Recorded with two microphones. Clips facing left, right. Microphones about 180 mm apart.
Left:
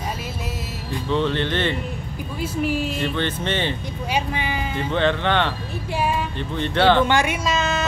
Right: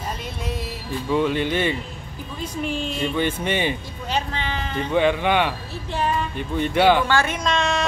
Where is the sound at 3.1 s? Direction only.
10° right (ahead or behind).